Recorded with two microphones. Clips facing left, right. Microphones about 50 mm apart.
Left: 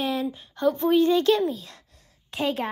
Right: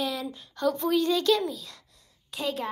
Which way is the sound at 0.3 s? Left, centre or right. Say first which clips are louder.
Left 3 dB; left.